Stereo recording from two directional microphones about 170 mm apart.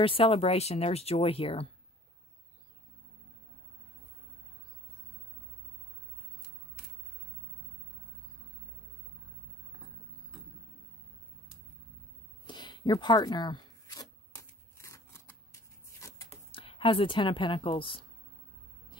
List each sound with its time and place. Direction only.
0.0 s speech: 30° left (ahead or behind)
12.4 s zipper: 25° left (ahead or behind)
16.5 s speech: 30° left (ahead or behind)